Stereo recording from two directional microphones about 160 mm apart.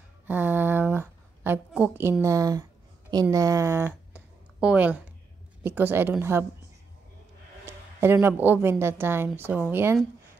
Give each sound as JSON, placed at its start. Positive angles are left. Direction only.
{"t": 0.3, "sound": "a sound", "side_deg": -10}
{"t": 3.1, "sound": "a woman's voice", "side_deg": -25}
{"t": 7.6, "sound": "a woman's voice", "side_deg": -15}